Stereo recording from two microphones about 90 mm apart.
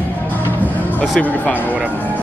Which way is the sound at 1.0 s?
15° left (ahead or behind).